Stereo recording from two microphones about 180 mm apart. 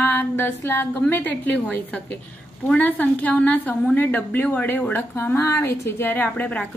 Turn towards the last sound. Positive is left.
turn(degrees=10)  # may be behind; listen again after turning